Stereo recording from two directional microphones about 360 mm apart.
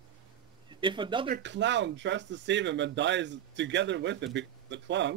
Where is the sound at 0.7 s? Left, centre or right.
Centre.